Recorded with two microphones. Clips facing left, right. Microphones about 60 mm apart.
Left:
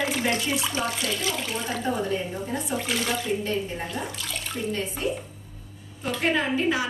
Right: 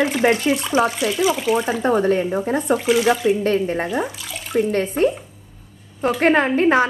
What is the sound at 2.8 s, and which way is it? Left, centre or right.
Speech, centre.